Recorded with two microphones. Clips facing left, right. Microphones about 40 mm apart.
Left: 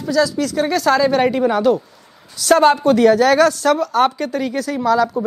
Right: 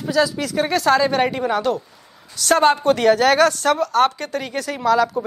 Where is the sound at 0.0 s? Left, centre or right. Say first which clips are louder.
Left 2 dB; centre.